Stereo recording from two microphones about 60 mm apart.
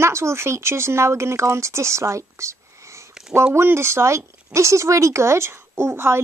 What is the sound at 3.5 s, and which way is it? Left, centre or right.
Speech, right.